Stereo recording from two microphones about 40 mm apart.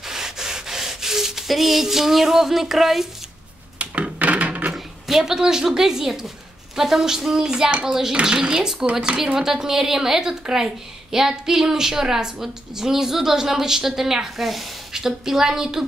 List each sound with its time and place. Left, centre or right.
0.0 s rub: centre
3.7 s a sound: right
4.7 s a woman's voice: centre